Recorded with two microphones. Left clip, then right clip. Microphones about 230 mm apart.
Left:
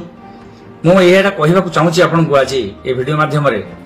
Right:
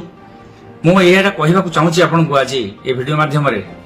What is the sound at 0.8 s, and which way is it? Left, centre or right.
A man's voice, centre.